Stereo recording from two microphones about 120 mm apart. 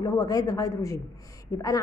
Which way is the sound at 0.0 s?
30° left (ahead or behind).